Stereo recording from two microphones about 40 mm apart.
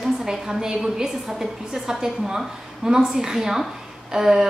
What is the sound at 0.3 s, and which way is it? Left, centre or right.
A woman's voice, centre.